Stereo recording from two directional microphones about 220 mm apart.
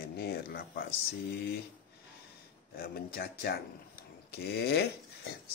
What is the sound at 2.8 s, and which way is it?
Speech, 45° left (ahead or behind).